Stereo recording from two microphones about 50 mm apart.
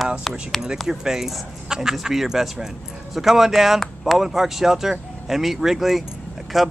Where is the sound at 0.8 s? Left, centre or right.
Centre.